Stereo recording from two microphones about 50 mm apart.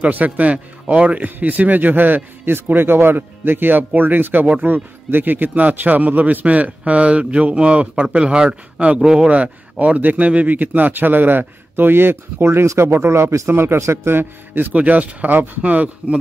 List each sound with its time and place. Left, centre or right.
0.1 s a man's voice: right
14.7 s speech: right